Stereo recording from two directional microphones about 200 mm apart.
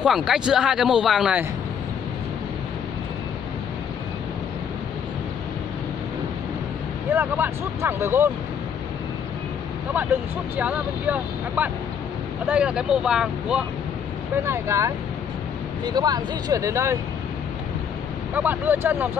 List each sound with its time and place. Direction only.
0.0 s speech: 5° right (ahead or behind)
7.1 s speech: 10° right (ahead or behind)
10.5 s speech: 5° right (ahead or behind)
14.4 s speech: 15° right (ahead or behind)
18.3 s speech: 10° right (ahead or behind)